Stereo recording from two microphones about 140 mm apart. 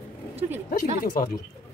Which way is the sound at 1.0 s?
80° left.